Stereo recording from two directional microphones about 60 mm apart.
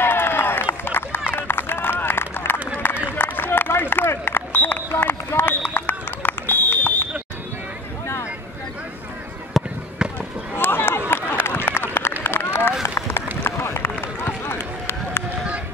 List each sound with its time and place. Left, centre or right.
0.0 s run: left
2.8 s a sound: left
9.6 s fireworks: centre
10.6 s run: left